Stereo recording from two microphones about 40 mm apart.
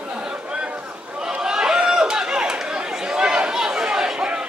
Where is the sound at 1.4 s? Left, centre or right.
Centre.